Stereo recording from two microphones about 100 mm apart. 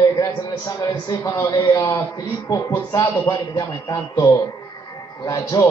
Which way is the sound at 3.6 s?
35° left (ahead or behind).